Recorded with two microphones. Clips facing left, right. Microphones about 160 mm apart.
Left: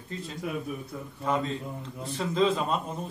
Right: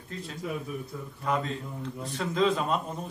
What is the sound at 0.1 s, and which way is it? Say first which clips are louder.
A man's voice: left 1 dB; centre (ahead or behind).